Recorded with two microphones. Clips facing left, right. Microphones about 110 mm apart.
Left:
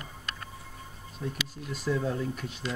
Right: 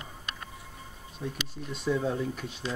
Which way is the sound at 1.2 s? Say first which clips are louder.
Even; 10° right (ahead or behind).